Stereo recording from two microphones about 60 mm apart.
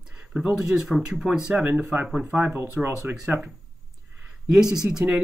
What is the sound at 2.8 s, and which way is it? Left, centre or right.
Speech, centre.